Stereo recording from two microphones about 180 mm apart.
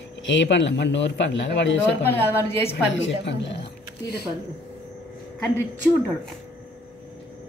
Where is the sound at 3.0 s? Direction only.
75° left (ahead or behind).